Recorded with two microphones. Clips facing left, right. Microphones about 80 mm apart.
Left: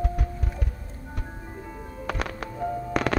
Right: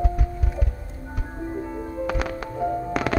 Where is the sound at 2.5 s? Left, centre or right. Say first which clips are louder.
Right 5 dB; centre.